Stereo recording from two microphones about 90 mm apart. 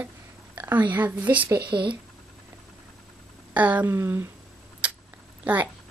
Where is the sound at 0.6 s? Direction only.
20° right (ahead or behind).